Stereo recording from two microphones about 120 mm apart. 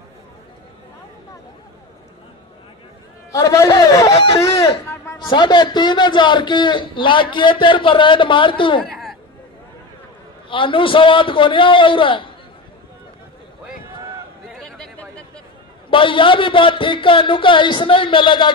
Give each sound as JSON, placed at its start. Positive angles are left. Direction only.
{"t": 3.3, "sound": "a man's voice", "side_deg": 25}
{"t": 4.4, "sound": "a sound", "side_deg": 25}
{"t": 5.2, "sound": "a man's voice", "side_deg": 40}
{"t": 10.5, "sound": "a man's voice", "side_deg": 45}
{"t": 14.5, "sound": "chatter", "side_deg": 5}
{"t": 15.9, "sound": "a man's voice", "side_deg": 45}